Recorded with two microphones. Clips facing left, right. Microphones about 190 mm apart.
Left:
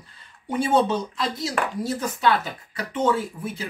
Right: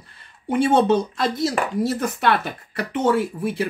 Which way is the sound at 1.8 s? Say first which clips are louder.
Right 1 dB; 65° right (ahead or behind).